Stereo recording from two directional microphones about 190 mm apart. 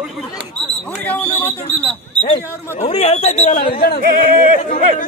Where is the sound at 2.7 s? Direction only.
35° left (ahead or behind).